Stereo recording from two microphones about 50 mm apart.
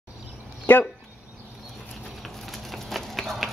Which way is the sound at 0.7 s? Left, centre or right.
Left.